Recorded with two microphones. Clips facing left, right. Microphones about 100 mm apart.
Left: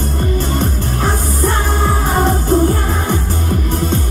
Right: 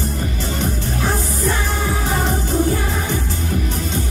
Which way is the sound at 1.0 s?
50° left (ahead or behind).